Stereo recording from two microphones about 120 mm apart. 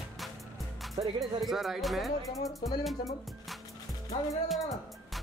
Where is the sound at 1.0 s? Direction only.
40° right (ahead or behind).